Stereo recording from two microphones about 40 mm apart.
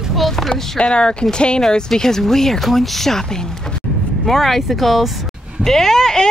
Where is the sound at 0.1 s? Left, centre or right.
Centre.